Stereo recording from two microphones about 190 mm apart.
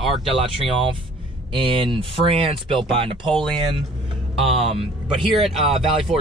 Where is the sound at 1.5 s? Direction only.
25° right (ahead or behind).